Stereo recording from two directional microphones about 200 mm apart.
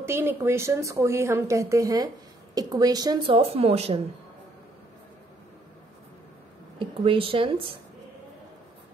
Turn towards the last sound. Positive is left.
turn(degrees=-25)  # may be behind; listen again after turning